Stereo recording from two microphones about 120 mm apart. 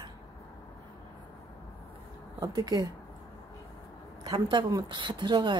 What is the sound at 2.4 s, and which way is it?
Speech, 30° right (ahead or behind).